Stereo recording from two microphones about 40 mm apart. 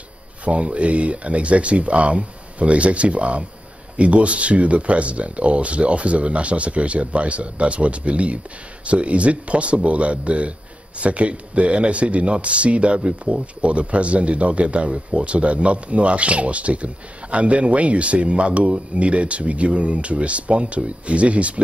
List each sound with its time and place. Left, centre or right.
0.5 s speech: right